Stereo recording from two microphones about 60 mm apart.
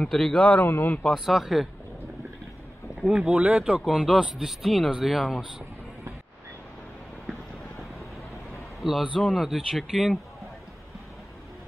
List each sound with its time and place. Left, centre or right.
0.0 s a man's voice: centre
0.7 s speech: left
1.1 s speech: centre
3.0 s speech: centre
3.3 s speech: right; by 5.4 s centre
8.8 s speech: centre